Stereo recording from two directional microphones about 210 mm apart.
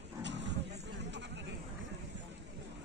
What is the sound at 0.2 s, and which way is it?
Roaring cats, 60° right (ahead or behind).